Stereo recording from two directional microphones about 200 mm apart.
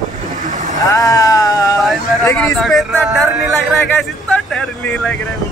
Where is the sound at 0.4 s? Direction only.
40° right (ahead or behind).